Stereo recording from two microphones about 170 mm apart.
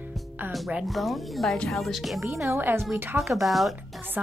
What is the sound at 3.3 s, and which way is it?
Speech, centre (ahead or behind).